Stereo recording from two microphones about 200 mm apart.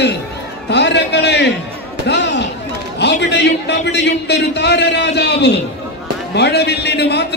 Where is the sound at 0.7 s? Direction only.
60° left (ahead or behind).